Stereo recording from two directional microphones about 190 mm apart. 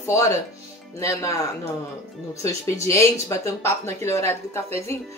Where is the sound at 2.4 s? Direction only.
15° left (ahead or behind).